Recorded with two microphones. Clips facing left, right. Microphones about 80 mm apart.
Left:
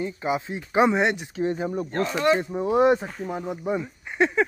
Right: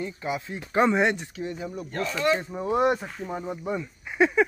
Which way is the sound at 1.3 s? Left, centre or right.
Left.